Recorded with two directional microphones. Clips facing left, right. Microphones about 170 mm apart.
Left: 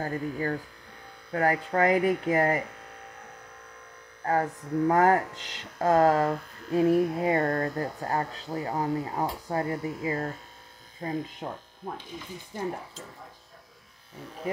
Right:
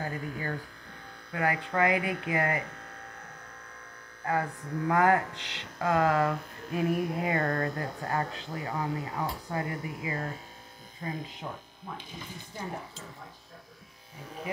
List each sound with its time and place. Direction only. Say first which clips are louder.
0.0 s speech: left 5 dB; 40° left (ahead or behind)
4.3 s speech: left 4 dB; 35° left (ahead or behind)